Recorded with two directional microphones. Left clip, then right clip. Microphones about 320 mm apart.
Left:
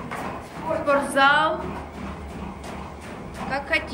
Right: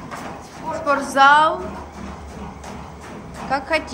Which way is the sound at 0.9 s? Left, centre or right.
Centre.